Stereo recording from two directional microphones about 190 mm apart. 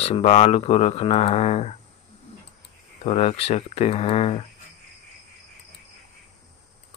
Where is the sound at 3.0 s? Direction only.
35° left (ahead or behind).